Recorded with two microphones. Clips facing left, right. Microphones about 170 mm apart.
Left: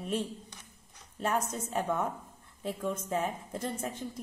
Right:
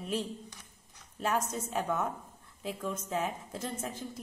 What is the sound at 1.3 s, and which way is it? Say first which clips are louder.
Speech: even; 30° left (ahead or behind).